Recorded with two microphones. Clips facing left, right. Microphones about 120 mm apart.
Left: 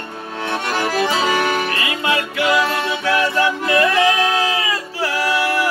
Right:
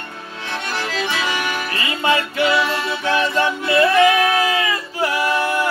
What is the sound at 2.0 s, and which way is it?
Music, 25° right (ahead or behind).